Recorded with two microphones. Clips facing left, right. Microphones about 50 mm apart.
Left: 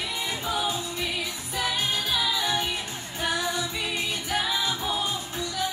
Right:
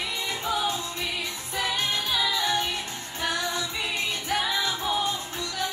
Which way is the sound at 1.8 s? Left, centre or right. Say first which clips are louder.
Even; centre.